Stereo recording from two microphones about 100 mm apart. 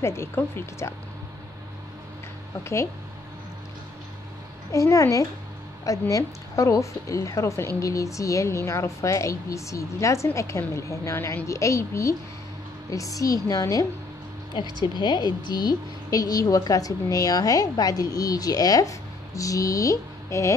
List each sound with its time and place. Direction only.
0.0 s a woman's voice: 25° left (ahead or behind)
4.7 s a woman's voice: 30° left (ahead or behind)
14.5 s speech: 50° left (ahead or behind); by 20.5 s 30° left (ahead or behind)